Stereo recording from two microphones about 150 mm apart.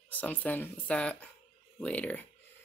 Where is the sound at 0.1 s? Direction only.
10° left (ahead or behind).